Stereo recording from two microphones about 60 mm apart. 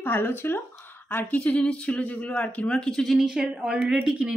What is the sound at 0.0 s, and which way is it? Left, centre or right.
Speech, left.